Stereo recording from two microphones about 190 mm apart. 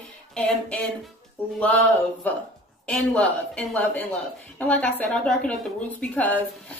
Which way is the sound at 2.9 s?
5° left (ahead or behind).